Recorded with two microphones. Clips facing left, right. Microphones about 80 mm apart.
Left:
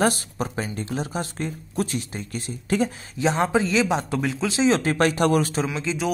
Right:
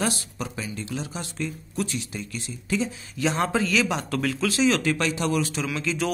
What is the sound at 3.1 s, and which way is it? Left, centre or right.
Speech, left.